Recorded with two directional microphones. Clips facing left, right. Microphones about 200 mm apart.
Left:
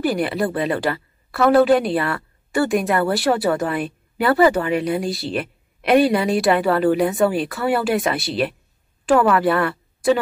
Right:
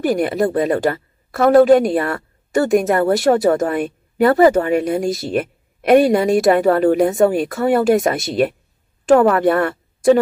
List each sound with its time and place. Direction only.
0.0 s a woman's voice: 45° right (ahead or behind)